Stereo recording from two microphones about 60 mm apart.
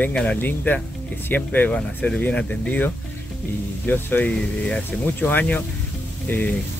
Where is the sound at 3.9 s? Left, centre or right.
Left.